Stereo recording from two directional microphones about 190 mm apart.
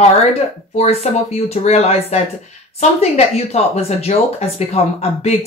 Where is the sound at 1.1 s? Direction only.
35° left (ahead or behind).